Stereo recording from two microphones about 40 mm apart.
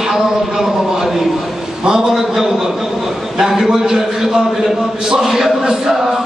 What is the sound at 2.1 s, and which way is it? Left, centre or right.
Speech, centre.